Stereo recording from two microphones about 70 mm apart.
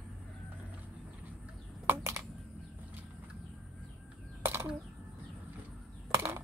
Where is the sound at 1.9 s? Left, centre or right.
Right.